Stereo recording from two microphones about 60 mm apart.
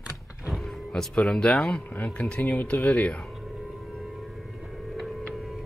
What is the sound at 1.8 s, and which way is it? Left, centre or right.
Speech, left.